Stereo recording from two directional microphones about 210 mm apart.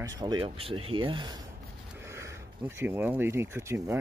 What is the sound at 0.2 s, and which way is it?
Speech, 20° right (ahead or behind).